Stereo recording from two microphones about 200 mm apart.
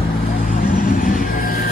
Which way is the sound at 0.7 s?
40° left (ahead or behind).